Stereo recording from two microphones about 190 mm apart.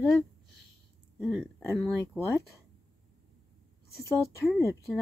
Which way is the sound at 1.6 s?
15° left (ahead or behind).